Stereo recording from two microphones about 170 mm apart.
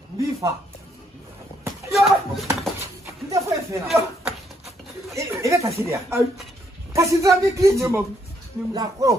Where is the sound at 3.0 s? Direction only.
15° right (ahead or behind).